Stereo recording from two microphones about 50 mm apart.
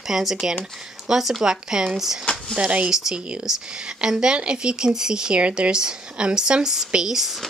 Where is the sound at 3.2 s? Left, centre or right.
Right.